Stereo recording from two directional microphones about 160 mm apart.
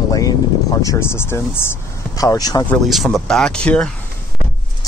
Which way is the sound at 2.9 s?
Centre (ahead or behind).